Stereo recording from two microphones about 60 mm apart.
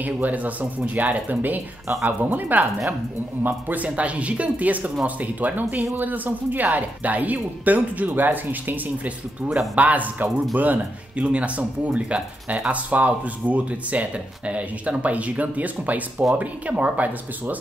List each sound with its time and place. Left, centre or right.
0.0 s speech: right